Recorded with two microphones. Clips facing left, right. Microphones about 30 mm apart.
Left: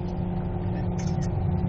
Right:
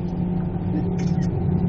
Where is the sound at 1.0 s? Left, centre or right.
Right.